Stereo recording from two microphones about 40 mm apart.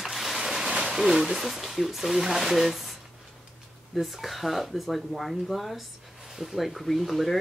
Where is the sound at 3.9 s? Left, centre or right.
Centre.